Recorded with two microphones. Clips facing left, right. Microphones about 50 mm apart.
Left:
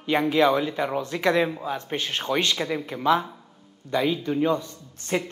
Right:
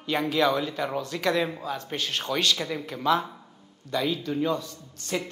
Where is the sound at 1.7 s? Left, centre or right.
Left.